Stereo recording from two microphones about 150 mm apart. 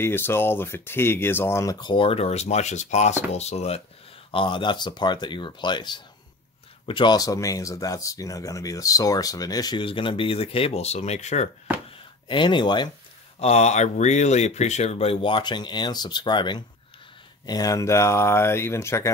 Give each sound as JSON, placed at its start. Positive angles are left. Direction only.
{"t": 0.0, "sound": "speech", "side_deg": 15}
{"t": 12.3, "sound": "speech", "side_deg": 30}
{"t": 13.4, "sound": "speech", "side_deg": 45}